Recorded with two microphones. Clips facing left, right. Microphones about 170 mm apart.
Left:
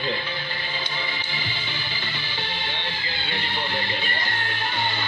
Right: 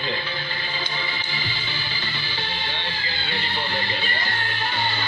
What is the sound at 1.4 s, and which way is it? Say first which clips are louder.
Music: right 1 dB; 20° left (ahead or behind).